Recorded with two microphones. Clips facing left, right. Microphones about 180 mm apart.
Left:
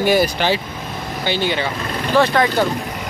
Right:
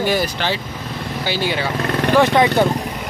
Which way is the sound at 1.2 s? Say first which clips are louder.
Left 1 dB; 5° right (ahead or behind).